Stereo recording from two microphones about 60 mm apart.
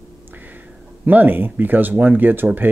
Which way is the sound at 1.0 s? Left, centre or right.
Right.